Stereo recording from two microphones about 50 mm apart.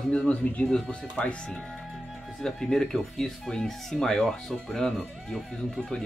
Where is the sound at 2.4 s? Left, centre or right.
Centre.